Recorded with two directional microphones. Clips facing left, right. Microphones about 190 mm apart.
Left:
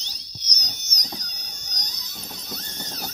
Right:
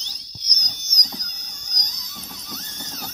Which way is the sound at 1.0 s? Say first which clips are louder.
Even; 30° left (ahead or behind).